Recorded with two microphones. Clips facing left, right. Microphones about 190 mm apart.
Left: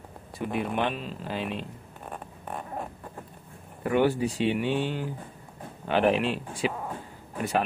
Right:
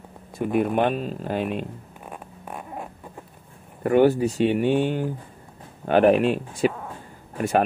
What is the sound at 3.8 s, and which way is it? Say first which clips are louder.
Speech: right 6 dB; 45° right (ahead or behind).